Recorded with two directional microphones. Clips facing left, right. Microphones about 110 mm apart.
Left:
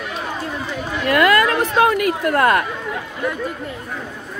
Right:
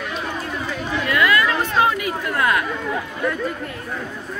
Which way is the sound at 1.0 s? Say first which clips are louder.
Left 4 dB; 50° left (ahead or behind).